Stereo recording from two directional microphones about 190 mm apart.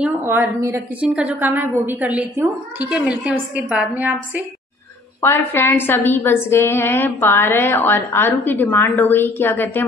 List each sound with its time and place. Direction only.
0.0 s a woman's voice: 10° right (ahead or behind)
2.9 s a woman's voice: 5° right (ahead or behind)
5.2 s a woman's voice: 10° left (ahead or behind)